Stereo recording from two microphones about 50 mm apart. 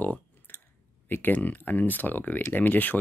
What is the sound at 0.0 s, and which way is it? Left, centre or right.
Clicking, left.